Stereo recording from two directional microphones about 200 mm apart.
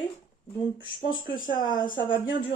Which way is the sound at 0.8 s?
25° left (ahead or behind).